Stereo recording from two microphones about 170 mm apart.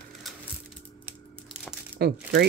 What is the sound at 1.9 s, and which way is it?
Speech, 70° right (ahead or behind).